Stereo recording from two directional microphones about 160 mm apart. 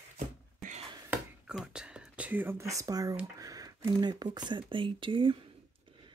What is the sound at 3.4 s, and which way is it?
Speech, 25° right (ahead or behind).